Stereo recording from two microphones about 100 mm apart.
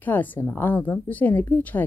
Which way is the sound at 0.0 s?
20° left (ahead or behind).